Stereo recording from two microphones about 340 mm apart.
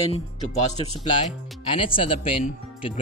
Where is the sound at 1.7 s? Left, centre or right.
Centre.